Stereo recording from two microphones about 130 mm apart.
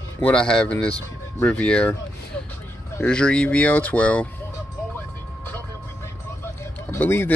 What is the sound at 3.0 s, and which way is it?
Speech, 5° left (ahead or behind).